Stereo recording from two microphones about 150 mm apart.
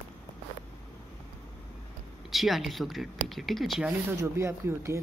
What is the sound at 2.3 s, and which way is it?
Speech, centre (ahead or behind).